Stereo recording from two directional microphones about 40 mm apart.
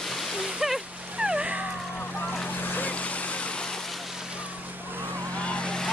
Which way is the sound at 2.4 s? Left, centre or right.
Left.